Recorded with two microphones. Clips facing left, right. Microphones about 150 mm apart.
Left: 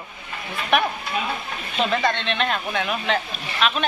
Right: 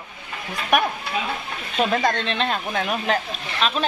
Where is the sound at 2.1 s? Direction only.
35° right (ahead or behind).